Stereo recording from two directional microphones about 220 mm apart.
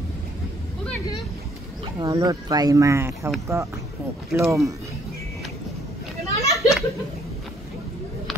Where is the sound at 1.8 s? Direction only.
15° right (ahead or behind).